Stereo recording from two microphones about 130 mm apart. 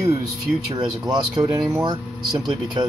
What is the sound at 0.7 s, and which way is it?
Speech, 35° right (ahead or behind).